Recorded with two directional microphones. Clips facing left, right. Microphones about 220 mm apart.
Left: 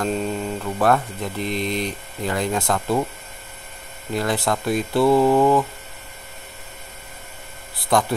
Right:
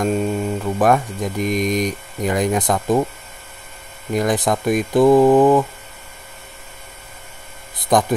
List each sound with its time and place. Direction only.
0.0 s speech: 10° right (ahead or behind)
4.1 s speech: 15° right (ahead or behind)